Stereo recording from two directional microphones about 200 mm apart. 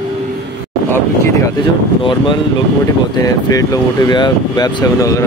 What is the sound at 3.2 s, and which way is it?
Speech, 15° left (ahead or behind).